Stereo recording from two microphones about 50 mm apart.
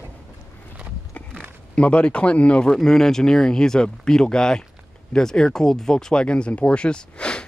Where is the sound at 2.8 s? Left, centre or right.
Centre.